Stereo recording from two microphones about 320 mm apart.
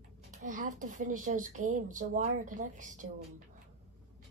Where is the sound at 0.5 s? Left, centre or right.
Right.